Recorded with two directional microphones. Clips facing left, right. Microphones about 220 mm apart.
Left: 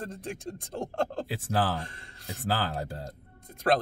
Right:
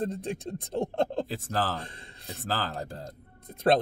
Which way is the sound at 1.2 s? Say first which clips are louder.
Left 2 dB; 10° left (ahead or behind).